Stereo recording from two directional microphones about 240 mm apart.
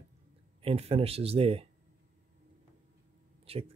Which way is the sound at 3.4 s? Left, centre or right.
Right.